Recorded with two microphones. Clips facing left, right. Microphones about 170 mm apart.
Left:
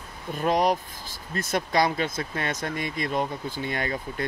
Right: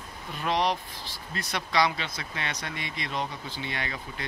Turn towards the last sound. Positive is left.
turn(degrees=45)  # may be behind; listen again after turning